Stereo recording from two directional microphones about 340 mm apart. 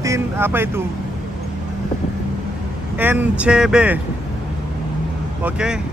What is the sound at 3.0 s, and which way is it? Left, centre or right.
Speech, centre.